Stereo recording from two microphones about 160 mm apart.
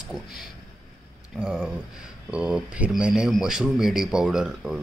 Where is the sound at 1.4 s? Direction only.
5° right (ahead or behind).